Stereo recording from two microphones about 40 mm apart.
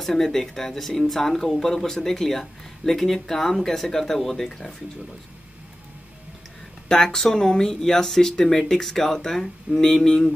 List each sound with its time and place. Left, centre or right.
0.0 s speech: centre
6.9 s speech: centre